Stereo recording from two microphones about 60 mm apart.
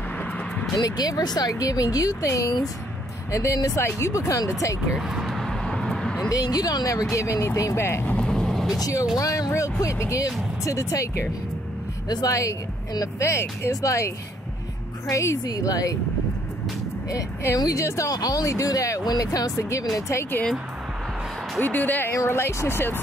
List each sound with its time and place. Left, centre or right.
0.7 s speech: left
4.9 s vehicle: centre
6.3 s speech: left
7.7 s speech: left
8.2 s vehicle: centre
9.1 s speech: left
9.5 s speech: left
13.0 s speech: left
13.7 s speech: left
17.6 s speech: left
18.5 s speech: left
21.5 s speech: left
22.1 s speech: left